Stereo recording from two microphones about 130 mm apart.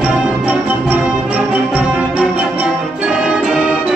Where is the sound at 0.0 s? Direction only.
10° right (ahead or behind).